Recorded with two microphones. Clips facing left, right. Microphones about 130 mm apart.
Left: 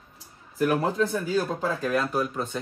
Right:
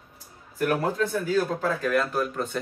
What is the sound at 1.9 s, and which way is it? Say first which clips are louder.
Speech: even; centre (ahead or behind).